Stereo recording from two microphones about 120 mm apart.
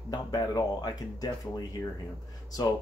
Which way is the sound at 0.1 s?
35° left (ahead or behind).